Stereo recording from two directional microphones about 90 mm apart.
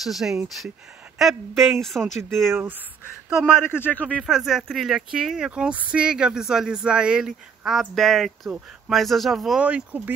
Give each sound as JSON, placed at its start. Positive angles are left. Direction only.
{"t": 0.0, "sound": "speech", "side_deg": -5}
{"t": 3.5, "sound": "speech", "side_deg": 25}
{"t": 4.2, "sound": "speech", "side_deg": -5}